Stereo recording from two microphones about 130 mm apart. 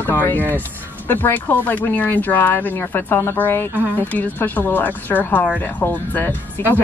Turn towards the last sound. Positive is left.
turn(degrees=15)  # may be behind; listen again after turning